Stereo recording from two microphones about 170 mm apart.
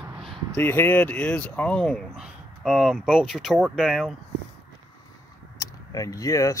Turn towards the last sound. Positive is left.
turn(degrees=20)  # may be behind; listen again after turning